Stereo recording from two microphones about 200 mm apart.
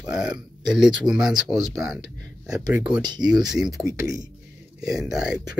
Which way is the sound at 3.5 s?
Centre (ahead or behind).